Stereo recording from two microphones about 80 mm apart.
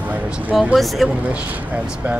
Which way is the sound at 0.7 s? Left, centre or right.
Centre.